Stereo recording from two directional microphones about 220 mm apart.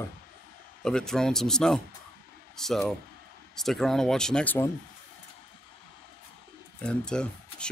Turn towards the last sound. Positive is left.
turn(degrees=5)  # may be behind; listen again after turning